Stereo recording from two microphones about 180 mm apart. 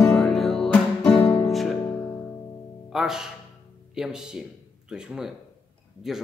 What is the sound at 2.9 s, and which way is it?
Speech, centre (ahead or behind).